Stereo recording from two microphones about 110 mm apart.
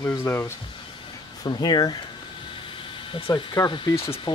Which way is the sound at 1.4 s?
40° left (ahead or behind).